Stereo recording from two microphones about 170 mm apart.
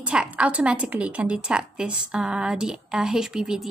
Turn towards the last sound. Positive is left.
turn(degrees=-5)  # may be behind; listen again after turning